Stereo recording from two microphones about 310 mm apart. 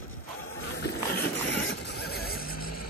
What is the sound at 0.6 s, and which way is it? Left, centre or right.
Horse, left.